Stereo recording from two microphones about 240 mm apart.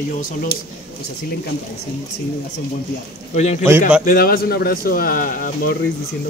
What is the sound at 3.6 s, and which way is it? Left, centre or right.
Speech, centre.